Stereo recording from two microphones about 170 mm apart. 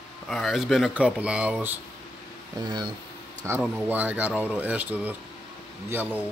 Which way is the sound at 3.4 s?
15° right (ahead or behind).